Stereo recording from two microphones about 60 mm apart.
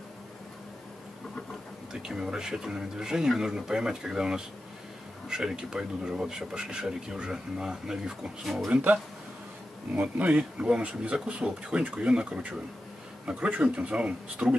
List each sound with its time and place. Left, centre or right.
1.9 s speech: centre
9.9 s speech: right